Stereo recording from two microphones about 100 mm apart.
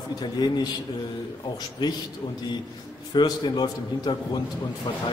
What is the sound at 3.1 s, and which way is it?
A man's voice, 45° left (ahead or behind).